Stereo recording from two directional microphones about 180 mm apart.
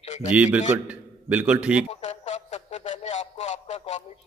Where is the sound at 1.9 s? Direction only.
40° left (ahead or behind).